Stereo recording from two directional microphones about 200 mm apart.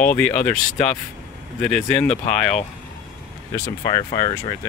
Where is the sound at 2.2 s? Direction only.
35° left (ahead or behind).